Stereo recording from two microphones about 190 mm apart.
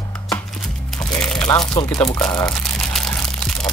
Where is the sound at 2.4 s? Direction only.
5° left (ahead or behind).